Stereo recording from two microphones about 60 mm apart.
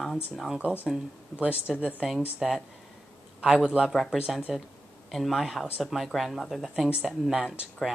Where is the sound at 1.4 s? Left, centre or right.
Right.